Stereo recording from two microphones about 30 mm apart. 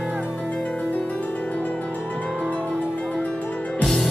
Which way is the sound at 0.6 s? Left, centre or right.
Left.